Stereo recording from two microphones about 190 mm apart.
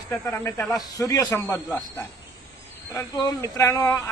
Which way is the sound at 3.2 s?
15° left (ahead or behind).